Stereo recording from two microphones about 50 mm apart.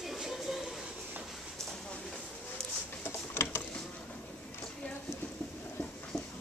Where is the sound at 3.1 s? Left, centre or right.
Left.